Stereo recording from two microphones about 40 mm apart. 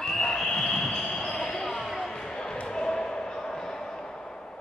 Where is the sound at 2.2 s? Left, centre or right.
Centre.